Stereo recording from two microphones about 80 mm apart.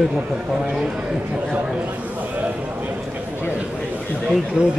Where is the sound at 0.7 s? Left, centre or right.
Centre.